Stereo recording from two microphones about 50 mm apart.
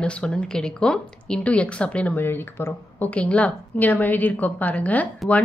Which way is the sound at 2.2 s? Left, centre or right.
Left.